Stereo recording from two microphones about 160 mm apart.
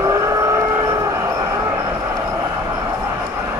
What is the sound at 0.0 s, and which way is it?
Train, 20° right (ahead or behind).